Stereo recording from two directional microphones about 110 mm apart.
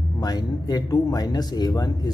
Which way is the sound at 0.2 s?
35° left (ahead or behind).